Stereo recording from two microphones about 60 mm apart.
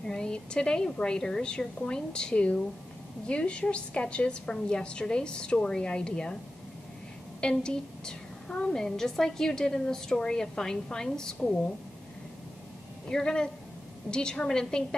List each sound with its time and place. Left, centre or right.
0.0 s a woman's voice: centre
7.3 s a woman's voice: centre
13.1 s a woman's voice: centre